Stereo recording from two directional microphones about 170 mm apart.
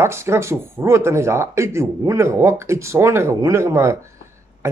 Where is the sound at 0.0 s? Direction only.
15° right (ahead or behind).